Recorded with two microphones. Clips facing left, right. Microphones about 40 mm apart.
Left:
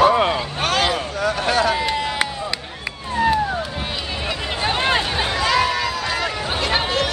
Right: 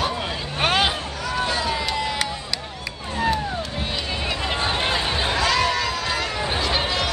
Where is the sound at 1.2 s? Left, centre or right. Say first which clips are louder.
Left 6 dB; left.